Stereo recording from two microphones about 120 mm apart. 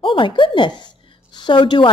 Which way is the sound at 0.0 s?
45° left (ahead or behind).